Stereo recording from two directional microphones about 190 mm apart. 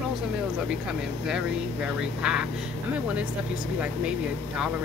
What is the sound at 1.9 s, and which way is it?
Speech, 5° right (ahead or behind).